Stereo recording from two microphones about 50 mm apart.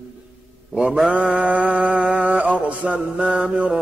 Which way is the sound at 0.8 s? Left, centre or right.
Centre.